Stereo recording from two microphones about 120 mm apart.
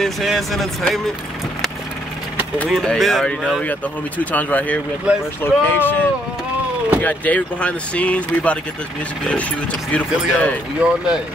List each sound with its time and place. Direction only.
0.0 s speech: centre (ahead or behind)
2.7 s speech: centre (ahead or behind)
5.1 s speech: 10° right (ahead or behind)
5.4 s speech: 15° left (ahead or behind)
10.8 s speech: 10° right (ahead or behind)